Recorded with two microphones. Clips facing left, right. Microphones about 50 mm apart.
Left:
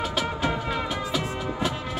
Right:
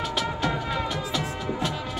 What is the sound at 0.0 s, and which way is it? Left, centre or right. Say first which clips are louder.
Music: even; centre.